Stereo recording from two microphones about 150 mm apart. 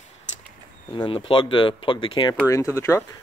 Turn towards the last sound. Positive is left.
turn(degrees=20)  # may be behind; listen again after turning